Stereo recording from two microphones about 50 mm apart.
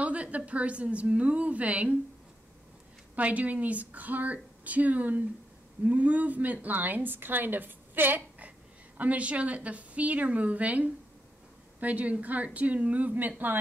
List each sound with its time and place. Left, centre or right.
0.0 s a sound: right
0.5 s a woman's voice: right
3.2 s a woman's voice: right